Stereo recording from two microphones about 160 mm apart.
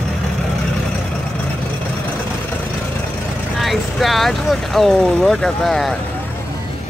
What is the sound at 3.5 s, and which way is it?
Speech, centre (ahead or behind).